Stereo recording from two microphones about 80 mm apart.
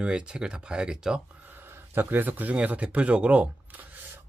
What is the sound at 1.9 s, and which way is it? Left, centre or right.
Speech, right.